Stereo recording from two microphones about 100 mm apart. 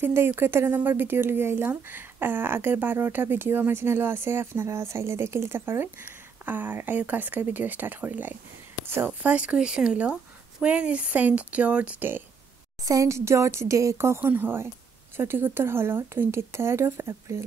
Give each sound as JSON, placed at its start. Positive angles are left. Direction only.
{"t": 0.0, "sound": "speech", "side_deg": -20}
{"t": 12.8, "sound": "speech", "side_deg": -35}